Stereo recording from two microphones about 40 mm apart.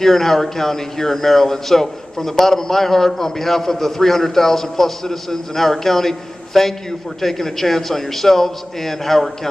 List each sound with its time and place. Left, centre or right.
0.0 s speech: centre